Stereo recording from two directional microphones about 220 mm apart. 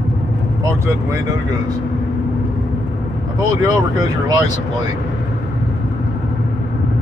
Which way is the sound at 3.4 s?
15° right (ahead or behind).